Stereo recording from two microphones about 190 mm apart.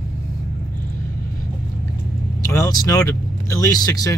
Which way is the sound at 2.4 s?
15° left (ahead or behind).